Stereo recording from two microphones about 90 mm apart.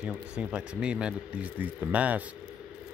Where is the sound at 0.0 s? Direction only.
10° right (ahead or behind).